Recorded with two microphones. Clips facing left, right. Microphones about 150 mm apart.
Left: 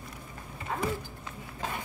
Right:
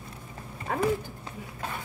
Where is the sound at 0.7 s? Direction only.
60° right (ahead or behind).